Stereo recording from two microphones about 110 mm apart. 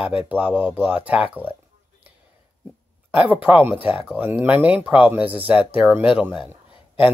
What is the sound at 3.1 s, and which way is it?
Speech, 15° right (ahead or behind).